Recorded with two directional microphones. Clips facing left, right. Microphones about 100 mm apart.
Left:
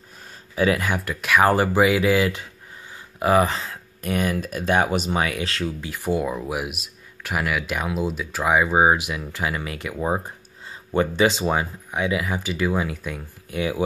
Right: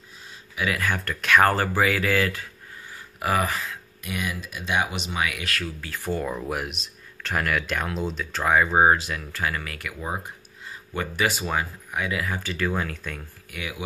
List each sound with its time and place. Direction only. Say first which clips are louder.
0.2 s a sound: left 8 dB; 45° left (ahead or behind)
0.7 s speech: left 2 dB; 20° left (ahead or behind)
4.0 s speech: left 8 dB; 45° left (ahead or behind); by 13.2 s 15° left (ahead or behind)
13.5 s speech: left 11 dB; 30° left (ahead or behind)